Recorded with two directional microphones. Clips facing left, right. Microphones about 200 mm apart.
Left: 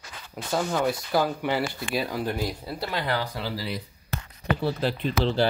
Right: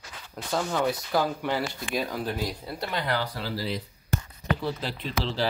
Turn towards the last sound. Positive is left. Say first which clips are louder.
# left 5 dB
turn(degrees=55)  # may be behind; listen again after turning